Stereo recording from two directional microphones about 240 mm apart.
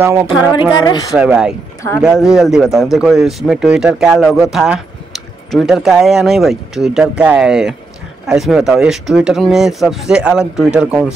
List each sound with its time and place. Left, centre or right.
0.0 s speech: centre
0.6 s speech: centre
1.1 s speech: centre